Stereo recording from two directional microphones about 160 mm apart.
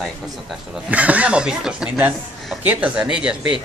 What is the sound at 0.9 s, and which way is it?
A man's voice, 10° right (ahead or behind).